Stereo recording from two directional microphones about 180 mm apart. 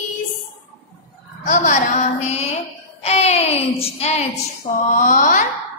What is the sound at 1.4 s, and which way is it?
A woman's voice, 45° left (ahead or behind).